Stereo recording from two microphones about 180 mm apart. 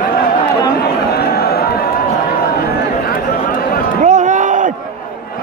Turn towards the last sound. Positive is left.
turn(degrees=-45)  # may be behind; listen again after turning